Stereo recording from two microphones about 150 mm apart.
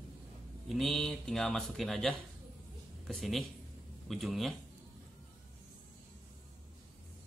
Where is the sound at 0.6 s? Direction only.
Centre (ahead or behind).